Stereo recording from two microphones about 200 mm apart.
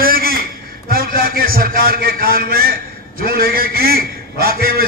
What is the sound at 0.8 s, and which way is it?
A man's voice, 45° right (ahead or behind).